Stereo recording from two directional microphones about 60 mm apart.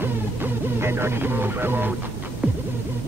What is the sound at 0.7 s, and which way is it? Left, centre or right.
Speech, right.